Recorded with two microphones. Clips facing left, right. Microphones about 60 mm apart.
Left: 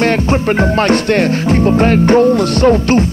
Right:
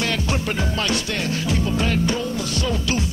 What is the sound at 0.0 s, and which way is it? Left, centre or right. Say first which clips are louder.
Music: left 11 dB; left.